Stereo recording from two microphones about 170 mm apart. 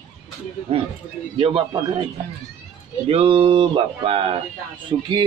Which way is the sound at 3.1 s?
35° right (ahead or behind).